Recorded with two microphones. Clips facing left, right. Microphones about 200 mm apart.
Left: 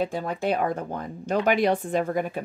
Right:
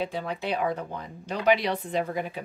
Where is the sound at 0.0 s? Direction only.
45° left (ahead or behind).